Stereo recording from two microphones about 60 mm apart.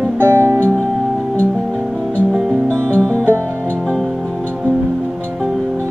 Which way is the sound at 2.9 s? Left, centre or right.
Centre.